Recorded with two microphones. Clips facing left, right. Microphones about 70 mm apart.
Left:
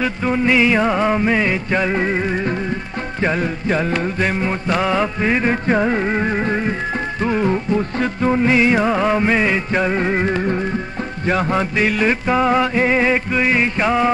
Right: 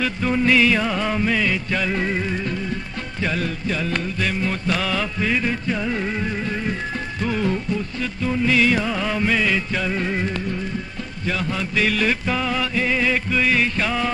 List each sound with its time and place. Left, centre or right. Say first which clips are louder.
0.0 s music: left 2 dB; centre; by 11.8 s left
11.8 s music: even; left